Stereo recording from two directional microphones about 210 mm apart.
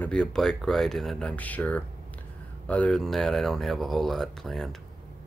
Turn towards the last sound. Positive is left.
turn(degrees=0)  # may be behind; listen again after turning